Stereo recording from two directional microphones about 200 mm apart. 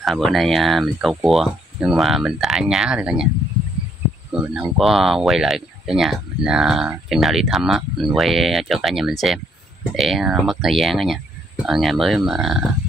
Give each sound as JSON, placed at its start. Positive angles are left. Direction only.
{"t": 0.0, "sound": "speech", "side_deg": 0}
{"t": 4.3, "sound": "speech", "side_deg": -5}